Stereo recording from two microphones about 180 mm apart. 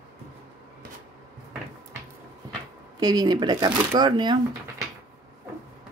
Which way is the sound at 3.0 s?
20° right (ahead or behind).